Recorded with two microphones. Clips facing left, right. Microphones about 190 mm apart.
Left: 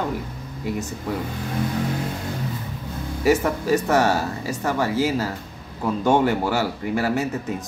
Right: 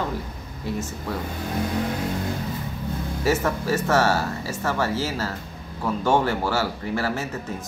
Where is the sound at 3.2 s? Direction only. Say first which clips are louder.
Left 4 dB; 15° left (ahead or behind).